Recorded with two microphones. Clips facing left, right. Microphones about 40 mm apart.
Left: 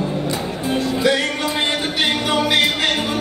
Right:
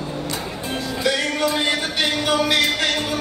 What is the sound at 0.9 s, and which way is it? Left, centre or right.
Music, left.